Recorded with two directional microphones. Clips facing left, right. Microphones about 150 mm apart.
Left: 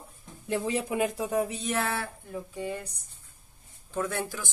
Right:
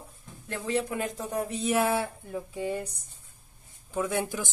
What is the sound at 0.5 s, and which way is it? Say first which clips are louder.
A woman's voice: left 1 dB; 15° left (ahead or behind).